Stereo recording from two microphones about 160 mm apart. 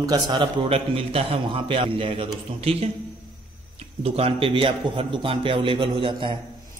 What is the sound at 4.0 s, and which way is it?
A man's voice, 35° right (ahead or behind).